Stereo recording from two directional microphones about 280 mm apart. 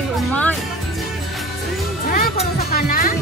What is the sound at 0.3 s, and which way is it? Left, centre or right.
Music, centre.